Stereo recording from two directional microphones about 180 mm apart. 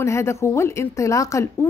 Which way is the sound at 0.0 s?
15° left (ahead or behind).